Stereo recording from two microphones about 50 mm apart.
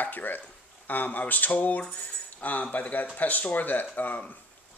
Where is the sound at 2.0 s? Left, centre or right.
Left.